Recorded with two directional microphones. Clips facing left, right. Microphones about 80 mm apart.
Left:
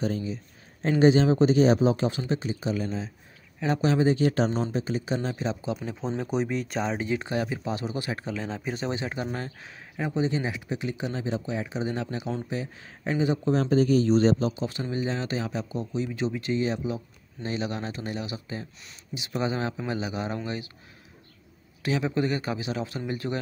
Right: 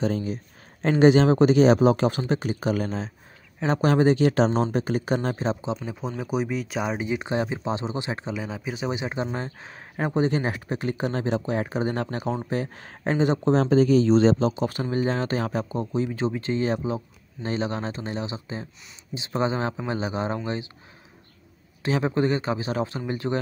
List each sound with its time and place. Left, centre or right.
0.0 s speech: right
0.8 s speech: right
4.6 s speech: right
5.3 s speech: right
5.9 s speech: centre
8.4 s speech: centre; by 11.2 s right
11.2 s speech: right
14.6 s speech: right
21.8 s speech: right